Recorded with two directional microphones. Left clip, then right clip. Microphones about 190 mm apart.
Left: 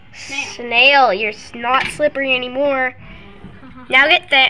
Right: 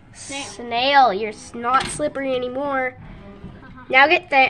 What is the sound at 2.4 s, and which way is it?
Speech, 30° left (ahead or behind).